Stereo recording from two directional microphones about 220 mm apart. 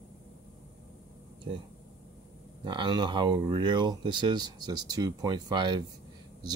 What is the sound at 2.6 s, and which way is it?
Speech, 20° right (ahead or behind).